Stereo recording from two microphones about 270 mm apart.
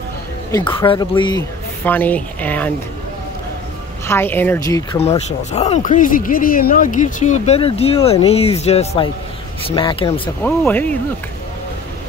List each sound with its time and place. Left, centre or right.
0.5 s speech: centre
4.1 s speech: centre
5.0 s speech: left
10.4 s speech: centre